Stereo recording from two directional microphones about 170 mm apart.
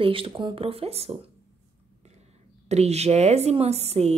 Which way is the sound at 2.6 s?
40° right (ahead or behind).